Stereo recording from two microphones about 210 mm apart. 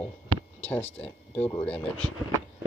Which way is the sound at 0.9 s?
5° left (ahead or behind).